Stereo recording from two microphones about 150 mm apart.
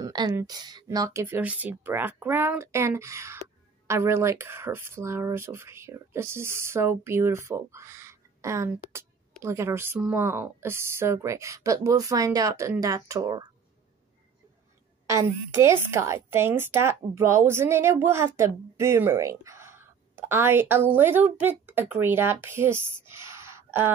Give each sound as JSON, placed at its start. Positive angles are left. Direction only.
{"t": 0.0, "sound": "a woman's voice", "side_deg": -25}
{"t": 15.0, "sound": "a woman's voice", "side_deg": -20}